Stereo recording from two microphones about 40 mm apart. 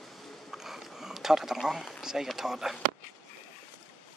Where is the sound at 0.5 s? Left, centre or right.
Centre.